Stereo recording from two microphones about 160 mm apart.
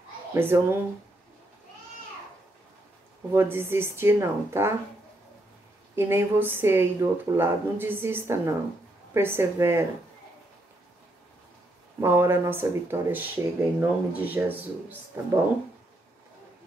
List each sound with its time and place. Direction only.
0.3 s speech: 15° right (ahead or behind)
3.3 s speech: 15° right (ahead or behind)
5.9 s speech: 15° right (ahead or behind)
12.0 s speech: 15° right (ahead or behind)